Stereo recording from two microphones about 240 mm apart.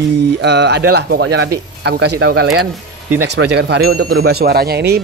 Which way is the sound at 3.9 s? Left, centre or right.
Right.